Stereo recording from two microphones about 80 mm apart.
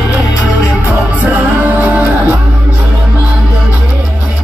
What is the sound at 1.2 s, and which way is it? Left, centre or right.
Music, right.